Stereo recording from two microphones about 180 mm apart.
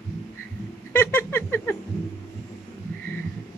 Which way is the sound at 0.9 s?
10° left (ahead or behind).